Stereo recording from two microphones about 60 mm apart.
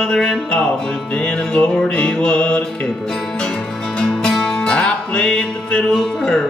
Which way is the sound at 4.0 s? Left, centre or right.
Centre.